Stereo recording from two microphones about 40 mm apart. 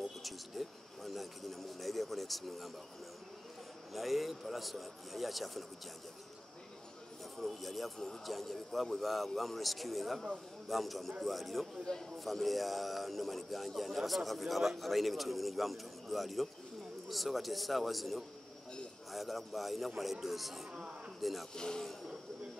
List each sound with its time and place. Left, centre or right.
0.2 s a sound: centre
3.9 s speech: centre
7.3 s speech: centre
11.8 s a man's voice: centre
12.2 s speech: centre
21.5 s a man's voice: centre